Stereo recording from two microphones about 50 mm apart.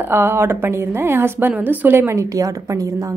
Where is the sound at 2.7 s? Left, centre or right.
Right.